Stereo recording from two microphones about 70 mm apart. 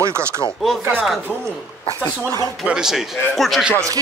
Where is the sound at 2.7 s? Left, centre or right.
Centre.